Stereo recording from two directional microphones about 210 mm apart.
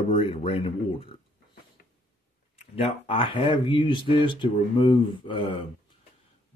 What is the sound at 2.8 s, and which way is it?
Speech, 25° left (ahead or behind).